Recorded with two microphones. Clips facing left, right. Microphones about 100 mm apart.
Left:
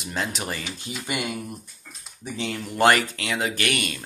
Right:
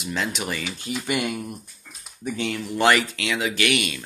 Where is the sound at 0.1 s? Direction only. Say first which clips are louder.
Right 2 dB; 35° left (ahead or behind).